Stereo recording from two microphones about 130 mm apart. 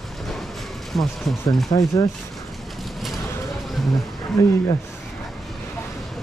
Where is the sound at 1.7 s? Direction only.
30° left (ahead or behind).